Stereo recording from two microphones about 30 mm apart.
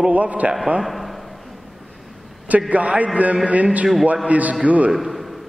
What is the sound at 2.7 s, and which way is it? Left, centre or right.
A man's voice, right.